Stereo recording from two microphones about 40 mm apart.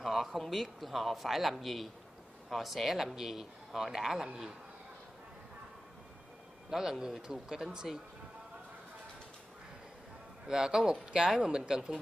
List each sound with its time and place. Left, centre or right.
0.0 s speech: centre
6.7 s speech: centre
10.5 s speech: centre